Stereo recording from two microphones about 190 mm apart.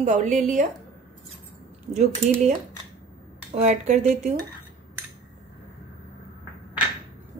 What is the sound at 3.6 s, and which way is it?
Speech, 35° right (ahead or behind).